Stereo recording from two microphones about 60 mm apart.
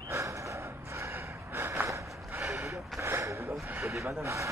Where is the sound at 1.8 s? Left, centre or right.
Right.